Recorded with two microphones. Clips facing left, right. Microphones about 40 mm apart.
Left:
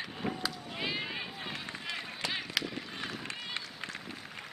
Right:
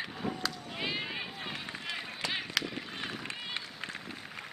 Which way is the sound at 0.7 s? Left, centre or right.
Centre.